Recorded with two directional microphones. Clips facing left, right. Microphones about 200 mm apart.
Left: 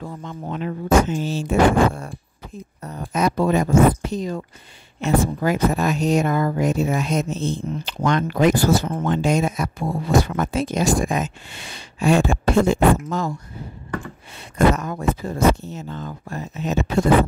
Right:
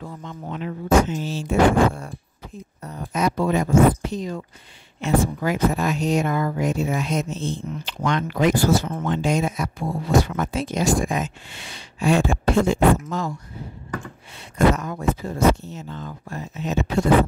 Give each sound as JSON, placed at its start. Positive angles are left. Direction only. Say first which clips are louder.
{"t": 0.0, "sound": "speech", "louder": "left 3 dB", "side_deg": 45}
{"t": 14.3, "sound": "speech", "louder": "left 1 dB", "side_deg": 45}